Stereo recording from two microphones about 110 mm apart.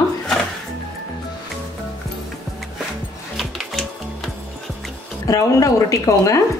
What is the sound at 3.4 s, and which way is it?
Music, centre (ahead or behind).